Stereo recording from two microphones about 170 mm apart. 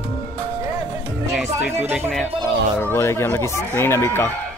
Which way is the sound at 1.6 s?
10° right (ahead or behind).